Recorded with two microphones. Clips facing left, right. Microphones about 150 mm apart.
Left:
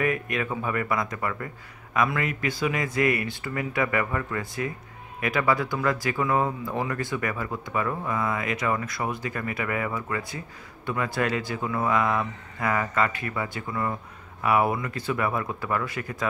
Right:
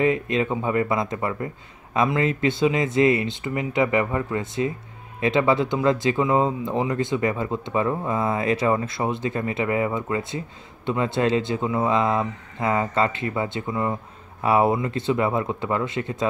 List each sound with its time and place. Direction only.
0.0 s speech: 25° right (ahead or behind)